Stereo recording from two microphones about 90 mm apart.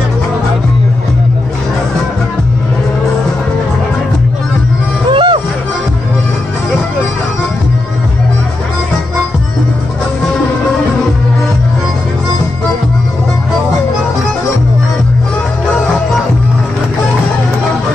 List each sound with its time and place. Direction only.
5.1 s music: 65° right (ahead or behind)